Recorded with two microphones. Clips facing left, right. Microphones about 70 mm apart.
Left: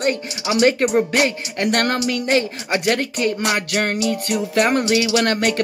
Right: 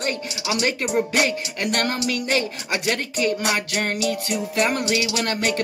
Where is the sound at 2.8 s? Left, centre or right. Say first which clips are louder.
Left 3 dB; left.